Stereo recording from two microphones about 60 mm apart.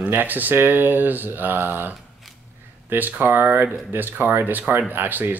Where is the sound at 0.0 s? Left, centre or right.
Right.